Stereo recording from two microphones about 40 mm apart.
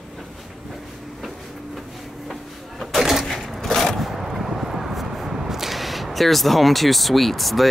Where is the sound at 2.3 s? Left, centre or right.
Centre.